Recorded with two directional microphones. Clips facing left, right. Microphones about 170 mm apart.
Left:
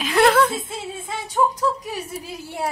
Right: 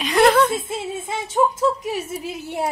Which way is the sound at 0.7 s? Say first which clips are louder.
Right 4 dB; 25° right (ahead or behind).